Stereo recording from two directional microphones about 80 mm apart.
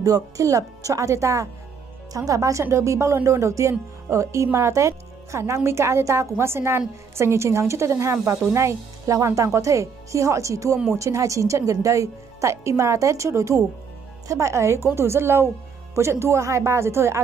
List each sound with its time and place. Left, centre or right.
0.0 s speech: right